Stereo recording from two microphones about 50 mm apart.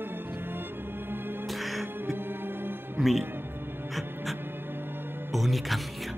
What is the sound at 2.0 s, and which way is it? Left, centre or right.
Music, right.